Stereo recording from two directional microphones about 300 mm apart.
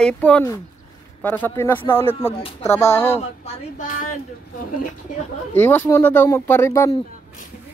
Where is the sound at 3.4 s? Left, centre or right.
Left.